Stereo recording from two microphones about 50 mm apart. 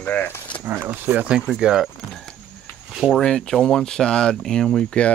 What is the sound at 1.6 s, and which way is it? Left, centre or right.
Speech, centre.